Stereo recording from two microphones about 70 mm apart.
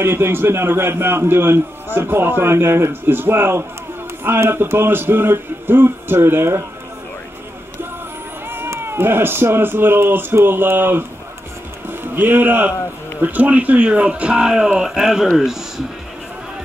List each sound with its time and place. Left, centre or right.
0.0 s a man's voice: right
8.5 s a man's voice: right; by 15.6 s centre